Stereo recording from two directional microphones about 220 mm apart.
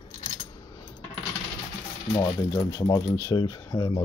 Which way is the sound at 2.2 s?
15° left (ahead or behind).